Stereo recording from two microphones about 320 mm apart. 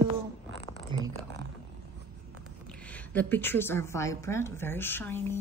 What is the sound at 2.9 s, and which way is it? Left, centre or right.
A woman's voice, centre.